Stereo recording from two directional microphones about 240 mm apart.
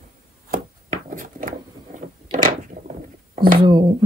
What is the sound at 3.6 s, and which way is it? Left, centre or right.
Speech, centre.